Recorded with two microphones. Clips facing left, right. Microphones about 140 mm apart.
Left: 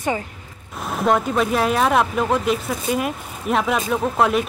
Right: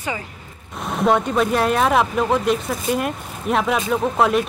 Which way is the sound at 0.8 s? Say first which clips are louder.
Right 1 dB; centre (ahead or behind).